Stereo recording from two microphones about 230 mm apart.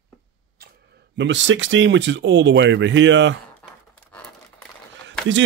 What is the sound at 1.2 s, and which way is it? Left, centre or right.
Speech, right.